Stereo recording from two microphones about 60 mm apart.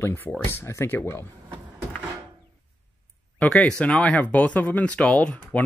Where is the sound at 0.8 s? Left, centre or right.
Left.